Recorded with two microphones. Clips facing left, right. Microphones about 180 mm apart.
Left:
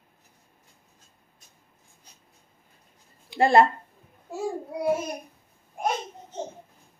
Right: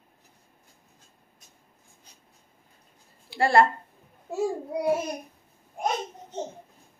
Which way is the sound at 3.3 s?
20° left (ahead or behind).